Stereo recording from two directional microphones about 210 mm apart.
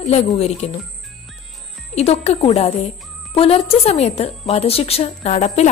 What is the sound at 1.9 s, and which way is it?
A woman's voice, 30° left (ahead or behind).